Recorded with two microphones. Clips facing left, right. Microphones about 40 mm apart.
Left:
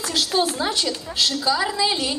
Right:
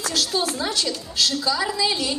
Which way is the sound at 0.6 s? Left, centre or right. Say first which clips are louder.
Left 1 dB; left.